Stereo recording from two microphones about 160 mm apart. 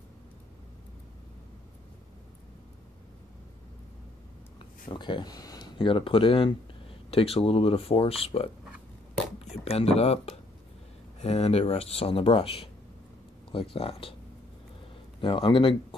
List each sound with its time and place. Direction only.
4.9 s speech: 30° left (ahead or behind)
15.1 s speech: 35° left (ahead or behind)